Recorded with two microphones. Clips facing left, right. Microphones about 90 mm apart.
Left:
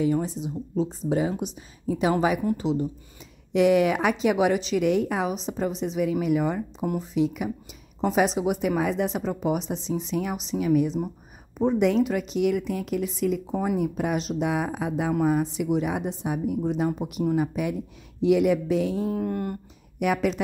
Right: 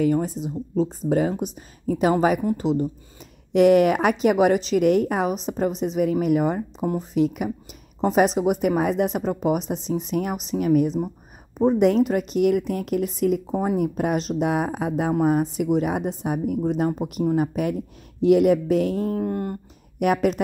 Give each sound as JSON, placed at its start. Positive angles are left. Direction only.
{"t": 0.0, "sound": "speech", "side_deg": -50}
{"t": 7.2, "sound": "speech", "side_deg": -50}
{"t": 11.5, "sound": "speech", "side_deg": -35}
{"t": 11.8, "sound": "speech", "side_deg": -45}
{"t": 19.1, "sound": "speech", "side_deg": -30}
{"t": 20.0, "sound": "speech", "side_deg": -50}